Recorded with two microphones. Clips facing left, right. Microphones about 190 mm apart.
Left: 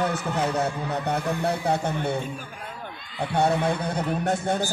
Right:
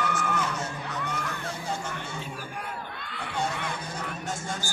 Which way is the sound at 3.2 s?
65° left (ahead or behind).